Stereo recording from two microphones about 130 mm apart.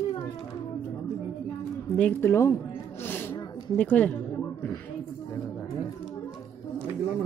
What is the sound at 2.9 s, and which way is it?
Snake, 15° left (ahead or behind).